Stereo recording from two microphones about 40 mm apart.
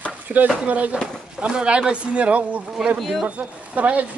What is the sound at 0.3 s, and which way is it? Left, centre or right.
Speech, right.